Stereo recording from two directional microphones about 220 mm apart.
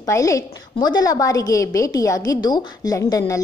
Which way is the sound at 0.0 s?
15° left (ahead or behind).